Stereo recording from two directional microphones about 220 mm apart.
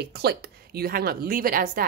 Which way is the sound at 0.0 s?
50° right (ahead or behind).